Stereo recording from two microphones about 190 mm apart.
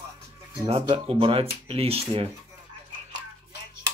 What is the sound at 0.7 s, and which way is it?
Speech, 30° right (ahead or behind).